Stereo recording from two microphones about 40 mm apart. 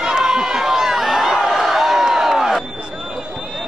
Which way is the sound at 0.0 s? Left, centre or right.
Centre.